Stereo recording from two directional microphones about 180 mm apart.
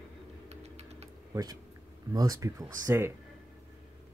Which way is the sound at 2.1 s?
20° right (ahead or behind).